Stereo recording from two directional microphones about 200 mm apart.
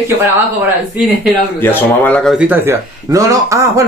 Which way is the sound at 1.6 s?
10° left (ahead or behind).